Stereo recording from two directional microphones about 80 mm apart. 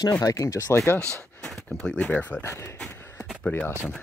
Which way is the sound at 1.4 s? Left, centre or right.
Centre.